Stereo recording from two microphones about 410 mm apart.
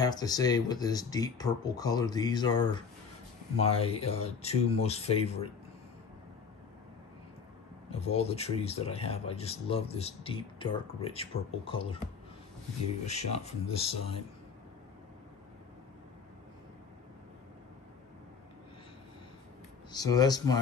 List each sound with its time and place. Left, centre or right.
0.0 s speech: centre
8.0 s speech: centre
13.0 s speech: centre
19.9 s speech: centre